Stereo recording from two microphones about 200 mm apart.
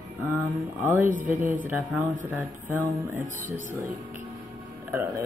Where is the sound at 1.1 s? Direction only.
40° right (ahead or behind).